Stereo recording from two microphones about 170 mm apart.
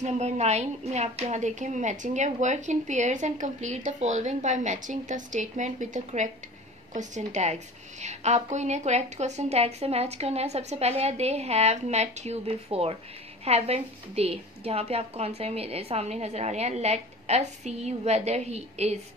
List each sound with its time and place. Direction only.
0.0 s a woman's voice: 40° right (ahead or behind)